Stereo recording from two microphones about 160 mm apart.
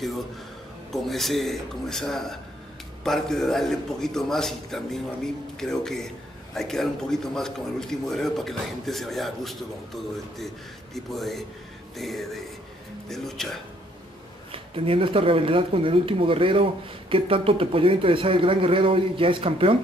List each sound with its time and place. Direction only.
0.9 s a man's voice: centre (ahead or behind)
11.1 s a man's voice: centre (ahead or behind)
14.5 s speech: 35° right (ahead or behind)